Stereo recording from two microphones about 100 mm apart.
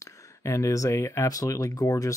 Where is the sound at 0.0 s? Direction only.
30° left (ahead or behind).